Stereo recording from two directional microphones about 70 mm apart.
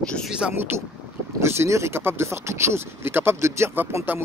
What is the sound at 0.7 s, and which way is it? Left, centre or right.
Speech, right.